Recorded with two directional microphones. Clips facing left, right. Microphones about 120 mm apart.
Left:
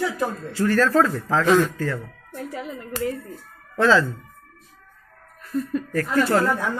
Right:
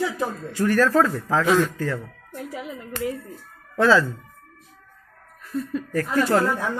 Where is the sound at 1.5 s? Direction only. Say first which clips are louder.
Left 3 dB; centre (ahead or behind).